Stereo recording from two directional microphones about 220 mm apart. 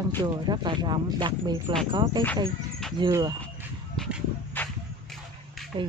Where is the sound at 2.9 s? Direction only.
20° right (ahead or behind).